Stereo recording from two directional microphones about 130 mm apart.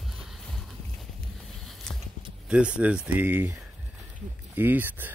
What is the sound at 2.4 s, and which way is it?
Speech, 10° right (ahead or behind).